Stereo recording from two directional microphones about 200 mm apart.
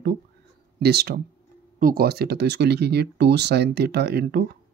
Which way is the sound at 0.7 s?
55° right (ahead or behind).